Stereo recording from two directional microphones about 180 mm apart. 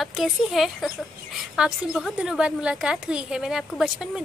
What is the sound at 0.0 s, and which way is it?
A woman's voice, centre (ahead or behind).